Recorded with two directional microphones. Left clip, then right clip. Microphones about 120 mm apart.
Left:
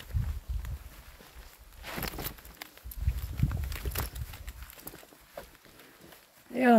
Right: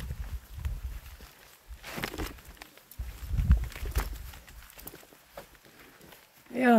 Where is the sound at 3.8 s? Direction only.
90° left.